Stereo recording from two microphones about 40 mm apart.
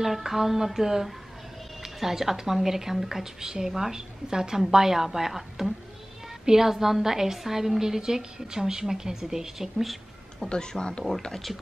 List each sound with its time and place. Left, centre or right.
0.0 s speech: centre
10.5 s speech: centre